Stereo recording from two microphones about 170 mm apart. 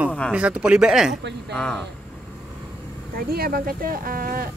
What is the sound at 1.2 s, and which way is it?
Speech, 90° right.